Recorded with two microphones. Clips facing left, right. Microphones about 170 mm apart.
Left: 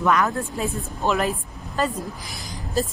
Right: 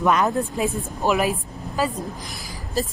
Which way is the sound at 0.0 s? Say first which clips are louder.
Right 1 dB; 20° right (ahead or behind).